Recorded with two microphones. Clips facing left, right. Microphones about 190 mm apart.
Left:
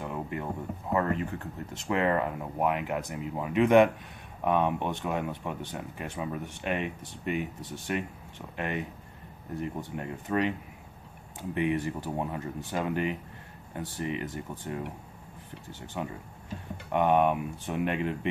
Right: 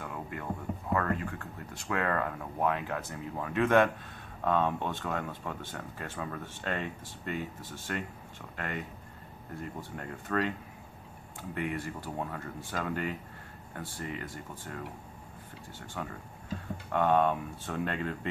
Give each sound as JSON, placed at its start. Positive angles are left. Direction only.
{"t": 0.0, "sound": "a sound", "side_deg": 20}
{"t": 0.9, "sound": "speech", "side_deg": 25}
{"t": 11.5, "sound": "speech", "side_deg": 20}
{"t": 16.0, "sound": "speech", "side_deg": 20}